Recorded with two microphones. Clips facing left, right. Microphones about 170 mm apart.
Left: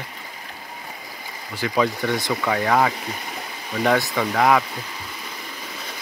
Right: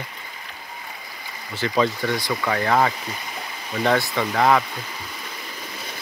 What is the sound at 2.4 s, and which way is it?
Speech, 5° left (ahead or behind).